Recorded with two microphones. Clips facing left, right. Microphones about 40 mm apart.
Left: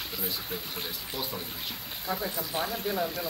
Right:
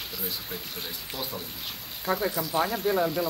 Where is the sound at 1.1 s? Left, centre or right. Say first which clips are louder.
Right 1 dB; centre.